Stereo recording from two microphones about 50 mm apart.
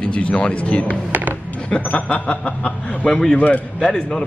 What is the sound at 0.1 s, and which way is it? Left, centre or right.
Speech, left.